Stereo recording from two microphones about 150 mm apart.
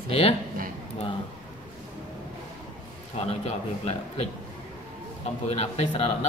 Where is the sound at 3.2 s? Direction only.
45° left (ahead or behind).